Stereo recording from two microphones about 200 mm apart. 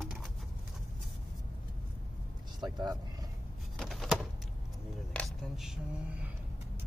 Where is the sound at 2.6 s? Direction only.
20° right (ahead or behind).